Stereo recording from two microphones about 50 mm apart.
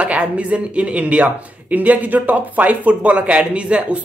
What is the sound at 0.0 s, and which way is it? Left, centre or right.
Speech, right.